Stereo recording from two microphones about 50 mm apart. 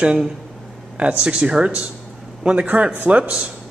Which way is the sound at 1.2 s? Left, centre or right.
Centre.